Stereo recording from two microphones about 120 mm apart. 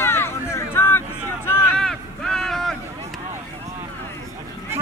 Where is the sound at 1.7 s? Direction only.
5° left (ahead or behind).